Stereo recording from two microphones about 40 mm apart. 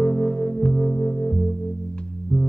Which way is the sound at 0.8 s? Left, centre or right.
Left.